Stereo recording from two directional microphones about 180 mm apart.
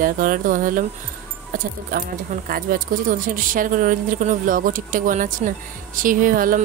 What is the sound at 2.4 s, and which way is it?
Speech, 50° right (ahead or behind).